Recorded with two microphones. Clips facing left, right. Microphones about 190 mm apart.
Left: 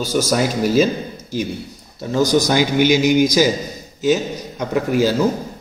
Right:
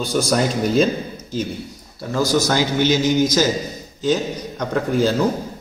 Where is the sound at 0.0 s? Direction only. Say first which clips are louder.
Left 1 dB; 5° left (ahead or behind).